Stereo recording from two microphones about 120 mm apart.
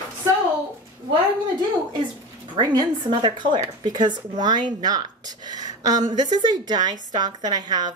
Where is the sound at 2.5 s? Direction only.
35° right (ahead or behind).